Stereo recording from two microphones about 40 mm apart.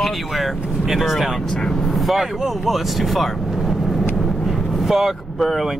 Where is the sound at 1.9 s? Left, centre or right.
Centre.